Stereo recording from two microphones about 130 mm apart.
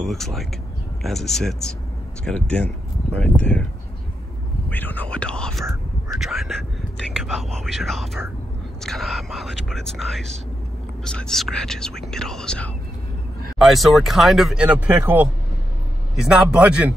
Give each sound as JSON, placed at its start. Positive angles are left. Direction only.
{"t": 0.0, "sound": "speech", "side_deg": 0}
{"t": 4.6, "sound": "whispering", "side_deg": 15}
{"t": 6.1, "sound": "a sound", "side_deg": 0}
{"t": 7.0, "sound": "a man's voice", "side_deg": 0}